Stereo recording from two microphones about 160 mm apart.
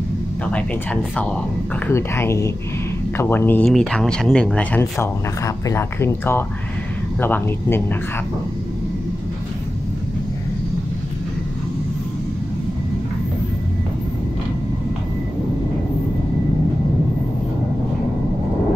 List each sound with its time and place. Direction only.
1.1 s speech: 10° left (ahead or behind)